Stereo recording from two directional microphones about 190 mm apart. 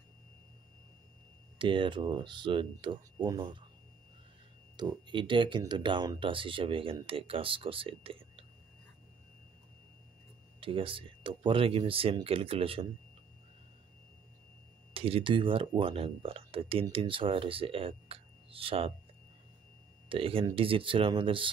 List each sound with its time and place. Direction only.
1.6 s speech: 25° right (ahead or behind)
4.7 s speech: 25° right (ahead or behind)
10.6 s speech: 30° right (ahead or behind)
15.0 s speech: 30° right (ahead or behind)
20.1 s speech: 30° right (ahead or behind)